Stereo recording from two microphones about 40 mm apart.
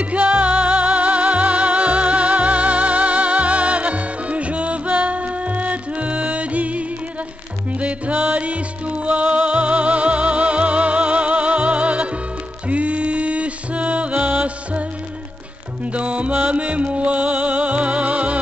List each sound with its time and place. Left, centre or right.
0.0 s music: right